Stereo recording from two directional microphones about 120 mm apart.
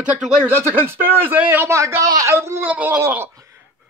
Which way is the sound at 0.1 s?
10° right (ahead or behind).